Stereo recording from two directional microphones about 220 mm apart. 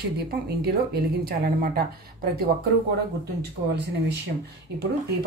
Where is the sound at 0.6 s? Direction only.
45° right (ahead or behind).